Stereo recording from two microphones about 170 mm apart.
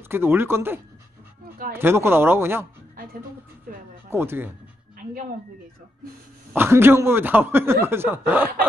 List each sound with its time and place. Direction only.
0.1 s speech: 15° right (ahead or behind)
3.7 s a sound: 55° right (ahead or behind)
4.1 s speech: 15° right (ahead or behind)
6.5 s speech: 15° right (ahead or behind)